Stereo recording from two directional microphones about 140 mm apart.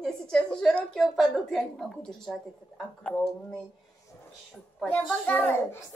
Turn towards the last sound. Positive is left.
turn(degrees=10)  # may be behind; listen again after turning